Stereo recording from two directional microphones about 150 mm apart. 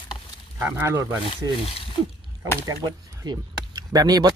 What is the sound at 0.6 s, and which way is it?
Speech, 15° right (ahead or behind).